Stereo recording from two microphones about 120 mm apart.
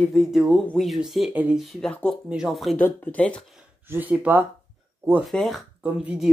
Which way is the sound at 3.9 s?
15° right (ahead or behind).